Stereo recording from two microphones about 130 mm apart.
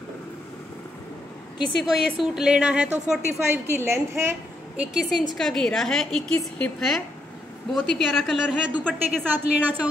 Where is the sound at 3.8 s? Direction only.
20° right (ahead or behind).